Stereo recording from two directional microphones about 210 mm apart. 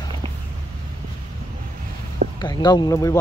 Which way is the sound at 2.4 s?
20° left (ahead or behind).